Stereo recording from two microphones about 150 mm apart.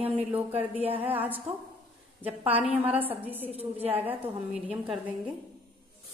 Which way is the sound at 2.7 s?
10° right (ahead or behind).